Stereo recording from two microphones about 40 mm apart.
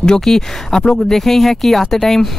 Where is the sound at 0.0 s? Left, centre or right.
Centre.